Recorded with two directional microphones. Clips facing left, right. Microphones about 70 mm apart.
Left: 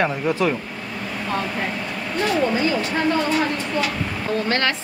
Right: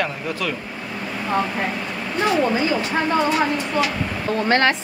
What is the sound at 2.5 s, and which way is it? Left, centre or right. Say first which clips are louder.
Speech: even; centre.